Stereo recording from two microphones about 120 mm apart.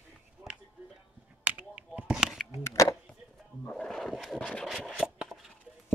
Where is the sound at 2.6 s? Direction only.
25° left (ahead or behind).